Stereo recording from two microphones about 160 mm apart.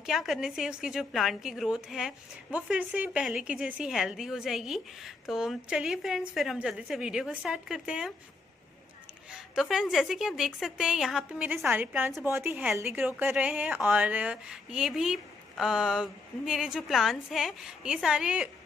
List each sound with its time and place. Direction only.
0.0 s speech: 5° right (ahead or behind)
9.3 s a woman's voice: centre (ahead or behind)